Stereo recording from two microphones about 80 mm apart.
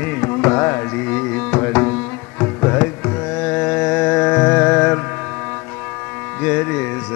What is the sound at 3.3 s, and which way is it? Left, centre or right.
Carnatic music, centre.